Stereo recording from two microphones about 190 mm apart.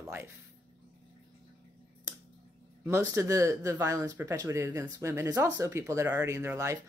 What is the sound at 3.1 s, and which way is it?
Speech, 15° right (ahead or behind).